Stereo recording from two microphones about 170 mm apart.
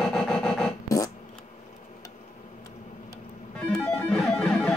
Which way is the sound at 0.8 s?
20° left (ahead or behind).